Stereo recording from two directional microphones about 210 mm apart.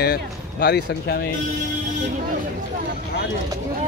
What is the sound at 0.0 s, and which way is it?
Speech, 45° left (ahead or behind).